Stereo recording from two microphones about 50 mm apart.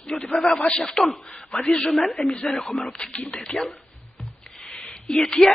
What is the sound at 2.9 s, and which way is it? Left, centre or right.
Speech, centre.